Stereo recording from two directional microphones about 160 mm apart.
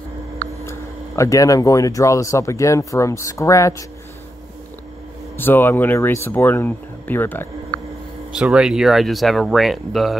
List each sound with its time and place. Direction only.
0.7 s speech: 20° left (ahead or behind)
5.4 s speech: 15° left (ahead or behind)
8.3 s speech: 5° right (ahead or behind)